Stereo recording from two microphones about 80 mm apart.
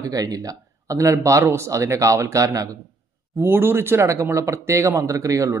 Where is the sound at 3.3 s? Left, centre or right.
Right.